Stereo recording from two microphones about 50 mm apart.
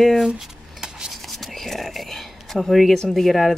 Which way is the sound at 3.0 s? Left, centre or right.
Centre.